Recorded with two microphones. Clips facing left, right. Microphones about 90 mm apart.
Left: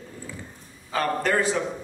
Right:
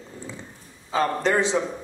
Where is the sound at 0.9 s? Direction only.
20° right (ahead or behind).